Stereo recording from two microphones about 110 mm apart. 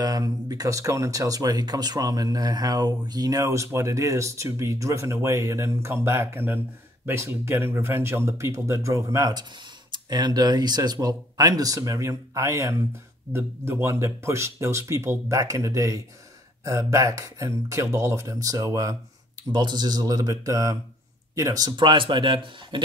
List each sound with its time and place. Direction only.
0.0 s speech: 35° right (ahead or behind)
19.5 s speech: 40° right (ahead or behind)